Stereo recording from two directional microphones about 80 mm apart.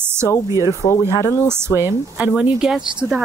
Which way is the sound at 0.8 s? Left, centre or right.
Left.